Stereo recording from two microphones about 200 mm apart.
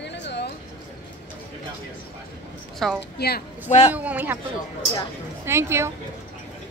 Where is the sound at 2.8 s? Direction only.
Centre (ahead or behind).